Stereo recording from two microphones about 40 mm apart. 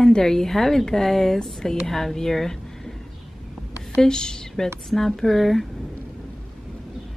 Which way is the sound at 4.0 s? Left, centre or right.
Centre.